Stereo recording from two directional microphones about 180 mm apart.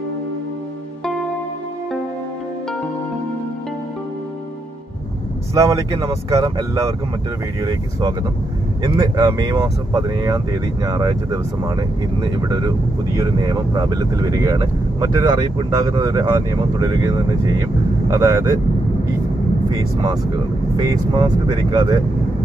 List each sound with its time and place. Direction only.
5.5 s speech: 20° right (ahead or behind)
8.8 s speech: 25° right (ahead or behind)
19.7 s speech: 20° right (ahead or behind)